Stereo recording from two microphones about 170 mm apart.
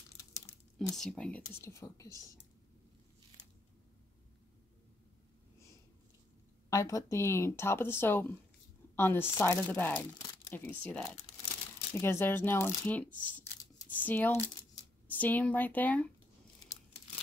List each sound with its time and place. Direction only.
0.7 s speech: centre (ahead or behind); by 2.1 s 20° left (ahead or behind)
6.7 s speech: 20° left (ahead or behind)